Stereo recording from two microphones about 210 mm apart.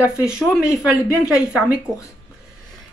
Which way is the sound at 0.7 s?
15° left (ahead or behind).